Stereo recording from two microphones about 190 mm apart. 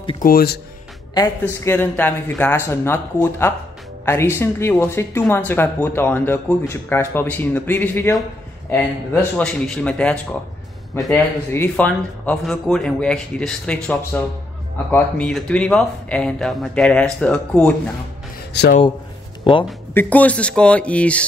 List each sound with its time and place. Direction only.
0.2 s speech: 50° left (ahead or behind)
1.5 s speech: 15° left (ahead or behind)
18.5 s a man's voice: 60° left (ahead or behind)
19.9 s speech: 10° left (ahead or behind)